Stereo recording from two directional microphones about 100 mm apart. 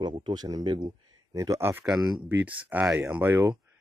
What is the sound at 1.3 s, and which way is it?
A man's voice, 35° right (ahead or behind).